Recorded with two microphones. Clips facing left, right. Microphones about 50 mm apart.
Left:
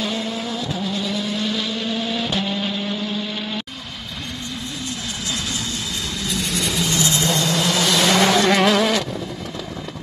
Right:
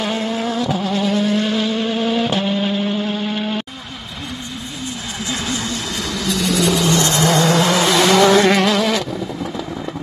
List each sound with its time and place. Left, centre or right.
0.0 s vehicle: right
2.6 s a sound: centre
3.0 s a sound: right
6.2 s vehicle: right
7.0 s vehicle: right
7.9 s vehicle: centre